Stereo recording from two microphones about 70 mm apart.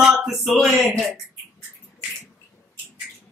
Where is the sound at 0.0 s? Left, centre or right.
Centre.